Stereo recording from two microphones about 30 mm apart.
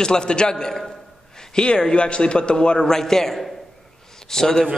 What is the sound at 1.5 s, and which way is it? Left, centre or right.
A man's voice, left.